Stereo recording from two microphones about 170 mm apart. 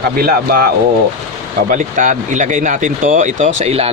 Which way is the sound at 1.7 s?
50° right (ahead or behind).